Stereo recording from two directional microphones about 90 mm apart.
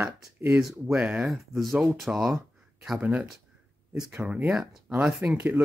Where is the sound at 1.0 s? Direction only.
15° right (ahead or behind).